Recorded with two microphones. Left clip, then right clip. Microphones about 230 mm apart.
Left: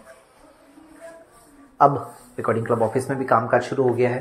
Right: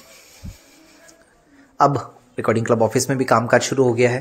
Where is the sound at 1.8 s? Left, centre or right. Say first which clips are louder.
Even; right.